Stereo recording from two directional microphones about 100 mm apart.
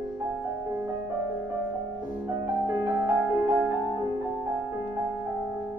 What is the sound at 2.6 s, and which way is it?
Music, 25° right (ahead or behind).